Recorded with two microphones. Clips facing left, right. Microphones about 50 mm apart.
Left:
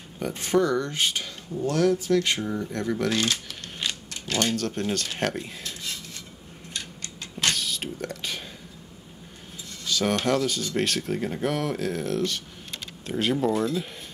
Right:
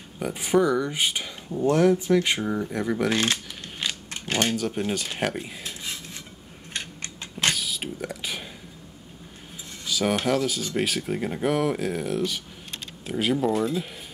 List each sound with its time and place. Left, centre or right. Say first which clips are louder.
0.2 s speech: right 1 dB; centre
3.1 s speech: right 1 dB; right
4.1 s typewriter: right 1 dB; right
4.6 s speech: right 1 dB; centre
7.4 s a sound: right 1 dB; centre
9.8 s speech: even; centre